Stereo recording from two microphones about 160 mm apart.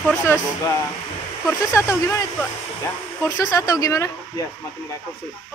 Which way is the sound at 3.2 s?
20° left (ahead or behind).